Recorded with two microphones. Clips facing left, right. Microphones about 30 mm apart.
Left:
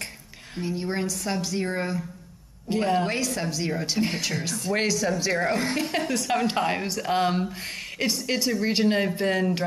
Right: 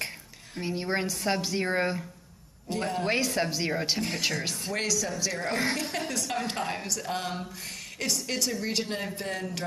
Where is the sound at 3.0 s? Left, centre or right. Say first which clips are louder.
Even; centre.